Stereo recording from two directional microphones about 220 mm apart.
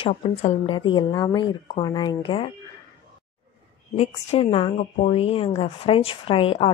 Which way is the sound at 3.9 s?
25° left (ahead or behind).